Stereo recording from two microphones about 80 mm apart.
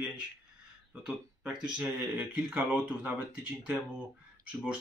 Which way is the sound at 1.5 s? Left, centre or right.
Centre.